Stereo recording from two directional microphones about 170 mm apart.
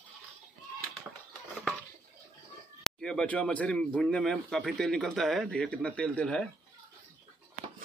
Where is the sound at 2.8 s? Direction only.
5° left (ahead or behind).